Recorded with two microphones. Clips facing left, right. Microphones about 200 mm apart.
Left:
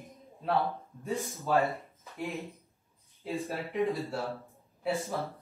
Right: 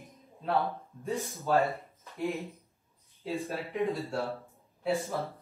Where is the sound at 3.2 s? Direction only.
Centre (ahead or behind).